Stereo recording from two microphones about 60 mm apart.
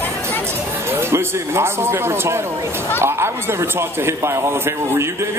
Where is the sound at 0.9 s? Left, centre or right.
Right.